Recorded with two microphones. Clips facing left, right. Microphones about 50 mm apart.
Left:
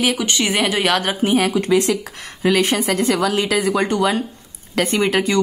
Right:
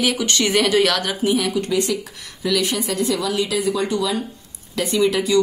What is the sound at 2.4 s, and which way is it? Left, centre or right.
A woman's voice, left.